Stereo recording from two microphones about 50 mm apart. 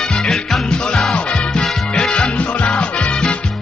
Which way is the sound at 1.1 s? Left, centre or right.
Centre.